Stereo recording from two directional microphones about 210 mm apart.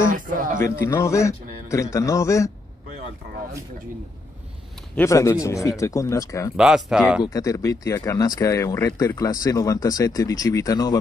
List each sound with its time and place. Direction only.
0.1 s a sound: 40° right (ahead or behind)
0.8 s speech: 10° left (ahead or behind)
4.9 s speech: 15° left (ahead or behind)
6.5 s speech: 5° right (ahead or behind)
7.2 s speech: 15° left (ahead or behind)